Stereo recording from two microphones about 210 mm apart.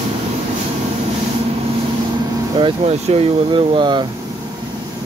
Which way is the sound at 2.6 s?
25° right (ahead or behind).